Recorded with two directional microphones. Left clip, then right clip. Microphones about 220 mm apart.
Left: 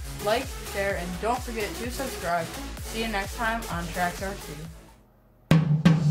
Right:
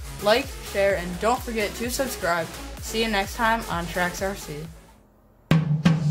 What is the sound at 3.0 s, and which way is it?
Speech, 50° right (ahead or behind).